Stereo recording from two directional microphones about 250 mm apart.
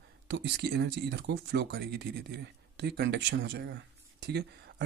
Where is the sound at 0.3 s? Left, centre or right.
Right.